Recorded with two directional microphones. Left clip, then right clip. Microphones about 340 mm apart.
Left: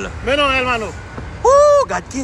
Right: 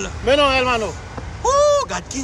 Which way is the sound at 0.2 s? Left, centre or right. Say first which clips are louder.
Even; right.